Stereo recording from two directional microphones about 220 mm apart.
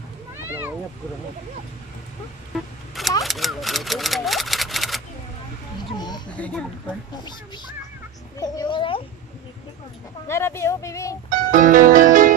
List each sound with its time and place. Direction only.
3.3 s typewriter: centre (ahead or behind)
5.9 s a sound: 20° left (ahead or behind)
6.3 s speech: 5° left (ahead or behind)
8.4 s a child's voice: 20° left (ahead or behind)
10.2 s speech: 10° left (ahead or behind)
11.2 s music: 35° right (ahead or behind)